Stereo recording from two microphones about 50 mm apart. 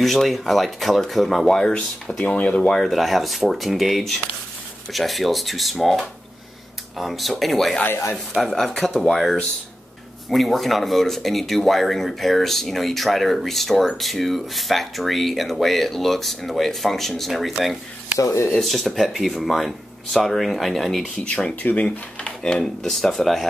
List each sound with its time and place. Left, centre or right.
0.0 s speech: centre
1.5 s speech: centre
2.2 s speech: left
2.8 s speech: centre
7.0 s speech: centre
18.2 s speech: left
18.6 s speech: centre
21.2 s speech: centre